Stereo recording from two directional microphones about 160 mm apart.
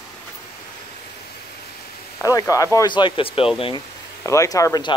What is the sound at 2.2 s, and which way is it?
Speech, 20° left (ahead or behind).